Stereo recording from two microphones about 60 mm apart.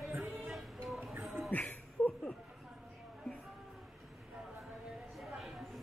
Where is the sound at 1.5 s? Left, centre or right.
Left.